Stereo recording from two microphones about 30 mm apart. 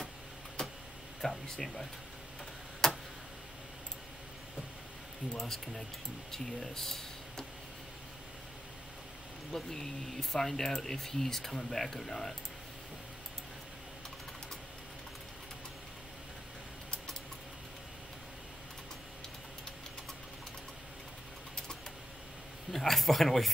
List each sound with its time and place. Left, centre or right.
0.6 s a sound: left
1.2 s speech: centre
2.8 s tick-tock: left
5.5 s speech: centre
9.5 s speech: centre
22.7 s speech: centre